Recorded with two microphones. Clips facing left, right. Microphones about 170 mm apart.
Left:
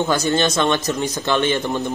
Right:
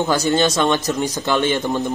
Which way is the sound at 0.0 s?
15° right (ahead or behind).